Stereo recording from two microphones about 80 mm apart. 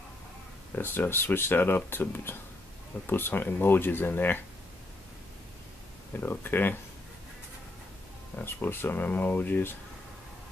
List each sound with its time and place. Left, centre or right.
0.7 s speech: left
6.1 s speech: left
8.4 s speech: left